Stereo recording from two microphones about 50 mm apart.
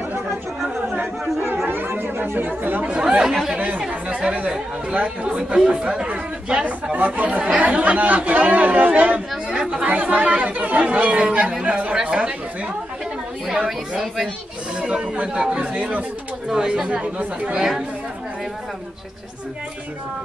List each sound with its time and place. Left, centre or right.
1.7 s chatter: right
2.8 s chatter: right
3.5 s chatter: right
5.6 s speech: centre
9.5 s chatter: centre
9.8 s speech: right
13.7 s a woman's voice: centre
14.8 s speech: centre
15.5 s speech: right
16.5 s speech: centre